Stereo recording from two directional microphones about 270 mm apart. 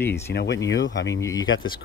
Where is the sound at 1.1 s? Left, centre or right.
Centre.